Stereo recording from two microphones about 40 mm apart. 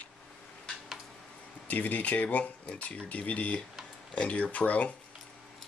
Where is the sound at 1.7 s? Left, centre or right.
Left.